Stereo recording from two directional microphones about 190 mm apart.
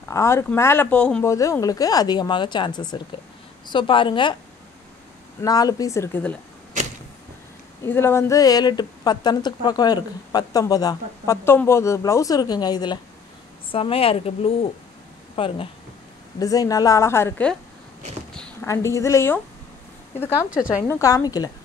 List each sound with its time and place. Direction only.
0.1 s speech: 15° left (ahead or behind)
5.4 s speech: 20° left (ahead or behind)
7.8 s speech: 15° left (ahead or behind); by 15.7 s 30° left (ahead or behind)
16.3 s speech: 20° left (ahead or behind)
18.3 s a sound: 5° left (ahead or behind)
18.7 s speech: 15° left (ahead or behind)
20.4 s a woman's voice: 5° right (ahead or behind)
20.8 s speech: 15° left (ahead or behind)